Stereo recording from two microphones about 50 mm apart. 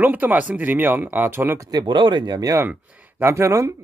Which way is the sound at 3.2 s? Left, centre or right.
Right.